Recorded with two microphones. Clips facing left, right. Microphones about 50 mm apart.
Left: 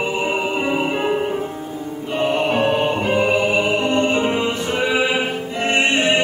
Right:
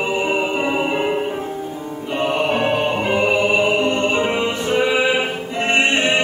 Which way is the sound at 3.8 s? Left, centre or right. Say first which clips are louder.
Even; centre.